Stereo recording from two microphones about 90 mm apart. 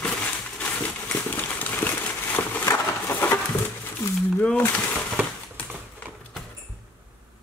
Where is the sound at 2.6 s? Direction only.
30° left (ahead or behind).